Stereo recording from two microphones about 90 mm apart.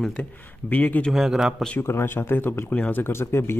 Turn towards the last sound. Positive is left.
turn(degrees=25)  # may be behind; listen again after turning